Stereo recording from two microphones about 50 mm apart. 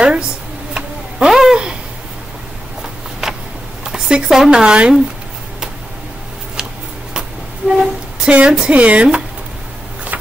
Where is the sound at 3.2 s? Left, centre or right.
Centre.